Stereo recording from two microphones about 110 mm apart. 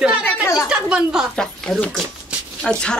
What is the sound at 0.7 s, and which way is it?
Speech, 5° right (ahead or behind).